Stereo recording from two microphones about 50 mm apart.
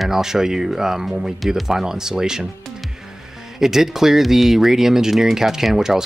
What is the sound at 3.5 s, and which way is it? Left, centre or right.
Speech, centre.